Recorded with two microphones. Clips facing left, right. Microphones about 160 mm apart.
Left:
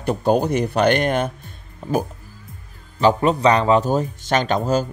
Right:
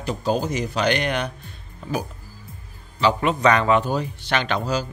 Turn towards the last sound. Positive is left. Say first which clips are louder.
# left 5 dB
turn(degrees=45)  # may be behind; listen again after turning